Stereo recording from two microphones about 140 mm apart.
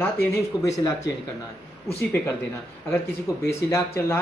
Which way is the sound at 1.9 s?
20° left (ahead or behind).